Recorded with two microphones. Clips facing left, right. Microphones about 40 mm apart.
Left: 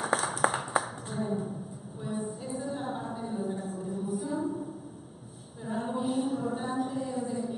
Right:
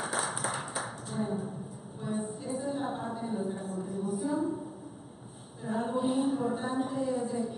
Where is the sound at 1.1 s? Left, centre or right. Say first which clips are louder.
Left 1 dB; centre.